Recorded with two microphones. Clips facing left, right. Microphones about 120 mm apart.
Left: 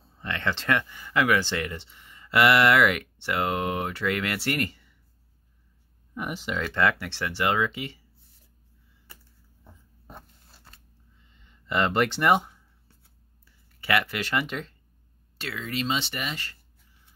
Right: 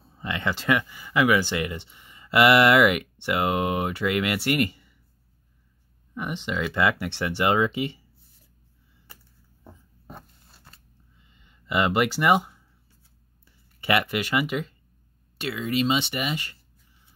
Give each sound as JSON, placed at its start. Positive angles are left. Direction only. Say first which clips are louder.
{"t": 0.2, "sound": "speech", "louder": "right 1 dB", "side_deg": -10}
{"t": 6.1, "sound": "speech", "louder": "right 2 dB", "side_deg": 5}
{"t": 10.0, "sound": "zipper", "louder": "right 2 dB", "side_deg": -5}
{"t": 11.3, "sound": "speech", "louder": "right 1 dB", "side_deg": -10}
{"t": 13.7, "sound": "speech", "louder": "right 2 dB", "side_deg": -20}